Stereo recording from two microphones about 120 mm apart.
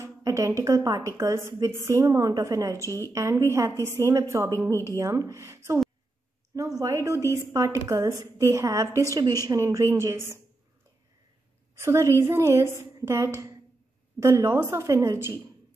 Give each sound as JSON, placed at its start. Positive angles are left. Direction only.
{"t": 0.0, "sound": "a woman's voice", "side_deg": -25}
{"t": 11.8, "sound": "a woman's voice", "side_deg": -25}